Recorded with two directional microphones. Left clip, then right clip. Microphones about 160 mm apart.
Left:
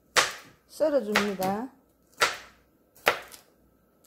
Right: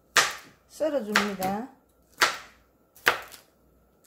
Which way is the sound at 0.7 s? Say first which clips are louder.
Left 3 dB; 35° left (ahead or behind).